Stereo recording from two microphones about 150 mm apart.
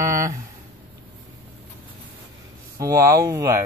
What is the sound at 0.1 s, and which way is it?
Speech, 20° right (ahead or behind).